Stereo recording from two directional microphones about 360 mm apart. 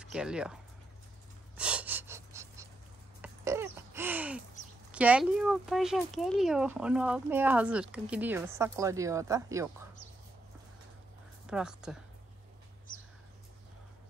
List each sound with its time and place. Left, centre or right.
0.0 s speech: centre
1.6 s gasp: centre
3.2 s a sound: centre
4.9 s speech: centre
11.4 s speech: centre